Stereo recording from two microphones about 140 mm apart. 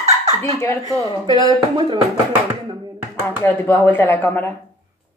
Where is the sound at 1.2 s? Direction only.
30° right (ahead or behind).